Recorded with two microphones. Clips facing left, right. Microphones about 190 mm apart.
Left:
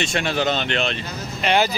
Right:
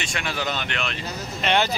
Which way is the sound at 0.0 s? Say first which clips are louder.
Left 7 dB; 25° left (ahead or behind).